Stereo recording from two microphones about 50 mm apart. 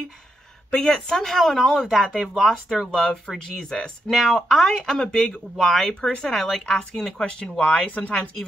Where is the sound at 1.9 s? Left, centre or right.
Centre.